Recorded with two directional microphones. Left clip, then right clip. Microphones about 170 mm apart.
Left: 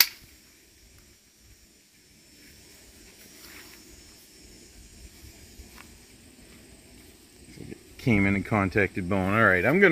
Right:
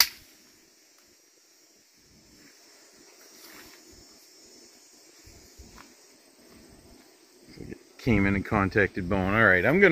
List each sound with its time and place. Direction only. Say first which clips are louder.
8.0 s speech: left 1 dB; 45° left (ahead or behind)